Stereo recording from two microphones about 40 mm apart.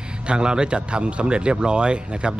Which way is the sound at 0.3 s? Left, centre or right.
Right.